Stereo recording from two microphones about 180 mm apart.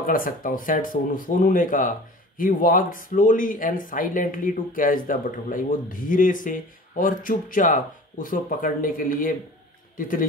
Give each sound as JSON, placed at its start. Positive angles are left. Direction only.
{"t": 0.0, "sound": "speech", "side_deg": 50}